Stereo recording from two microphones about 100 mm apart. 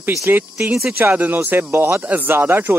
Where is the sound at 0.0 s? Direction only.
25° right (ahead or behind).